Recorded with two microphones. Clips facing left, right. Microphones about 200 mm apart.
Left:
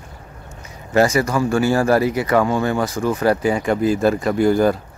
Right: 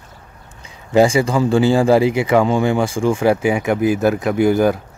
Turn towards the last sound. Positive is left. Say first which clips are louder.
# right 1 dB
turn(degrees=-5)  # may be behind; listen again after turning